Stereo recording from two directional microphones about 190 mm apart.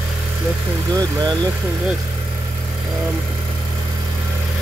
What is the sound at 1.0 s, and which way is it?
Vehicle, 20° right (ahead or behind).